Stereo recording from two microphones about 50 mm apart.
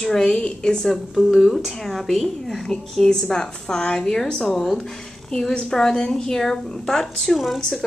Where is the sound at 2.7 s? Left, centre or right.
Centre.